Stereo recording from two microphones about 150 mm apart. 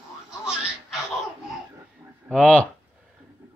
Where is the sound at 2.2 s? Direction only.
5° left (ahead or behind).